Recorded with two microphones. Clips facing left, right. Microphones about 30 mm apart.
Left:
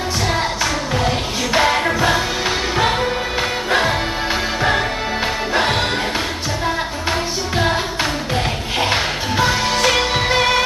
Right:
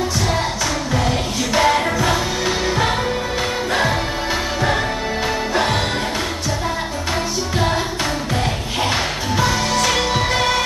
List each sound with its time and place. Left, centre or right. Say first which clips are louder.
1.5 s music: even; centre
4.6 s music: left 2 dB; centre
7.5 s music: left 2 dB; centre